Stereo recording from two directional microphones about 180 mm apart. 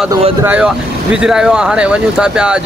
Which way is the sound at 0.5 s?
5° right (ahead or behind).